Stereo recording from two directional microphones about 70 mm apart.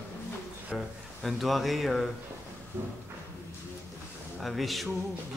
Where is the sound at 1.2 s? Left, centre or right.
Centre.